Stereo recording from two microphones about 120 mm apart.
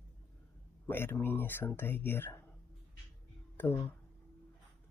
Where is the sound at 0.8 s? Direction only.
15° left (ahead or behind).